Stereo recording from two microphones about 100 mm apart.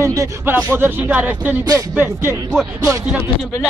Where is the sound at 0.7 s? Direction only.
20° right (ahead or behind).